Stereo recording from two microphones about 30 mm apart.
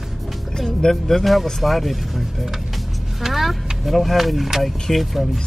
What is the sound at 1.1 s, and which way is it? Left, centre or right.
Speech, centre.